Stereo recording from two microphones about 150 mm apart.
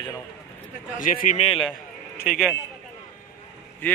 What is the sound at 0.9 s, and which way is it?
Speech, 60° left (ahead or behind).